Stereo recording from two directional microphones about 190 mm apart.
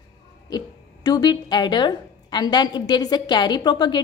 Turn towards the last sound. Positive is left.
turn(degrees=25)  # may be behind; listen again after turning